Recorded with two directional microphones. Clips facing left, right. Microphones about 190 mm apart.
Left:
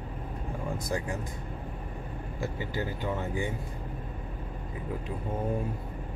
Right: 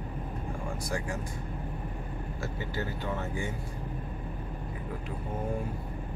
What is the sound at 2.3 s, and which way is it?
Speech, 15° left (ahead or behind).